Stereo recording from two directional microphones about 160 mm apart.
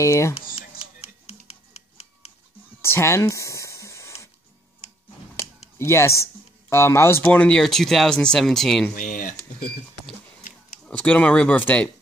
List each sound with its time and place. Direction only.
0.0 s speech: 20° left (ahead or behind)
0.3 s music: 40° left (ahead or behind)
2.8 s a sound: 15° left (ahead or behind)
5.8 s speech: 15° left (ahead or behind)
8.9 s speech: 55° left (ahead or behind)
10.9 s speech: 10° left (ahead or behind)